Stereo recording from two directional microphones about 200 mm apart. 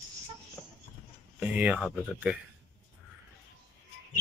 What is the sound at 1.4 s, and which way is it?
Speech, 5° right (ahead or behind).